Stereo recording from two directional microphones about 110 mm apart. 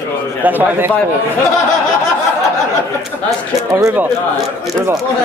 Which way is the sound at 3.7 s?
30° right (ahead or behind).